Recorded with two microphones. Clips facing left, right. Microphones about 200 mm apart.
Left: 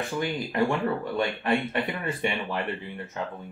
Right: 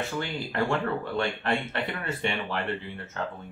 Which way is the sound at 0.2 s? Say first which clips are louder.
Left 6 dB; 15° left (ahead or behind).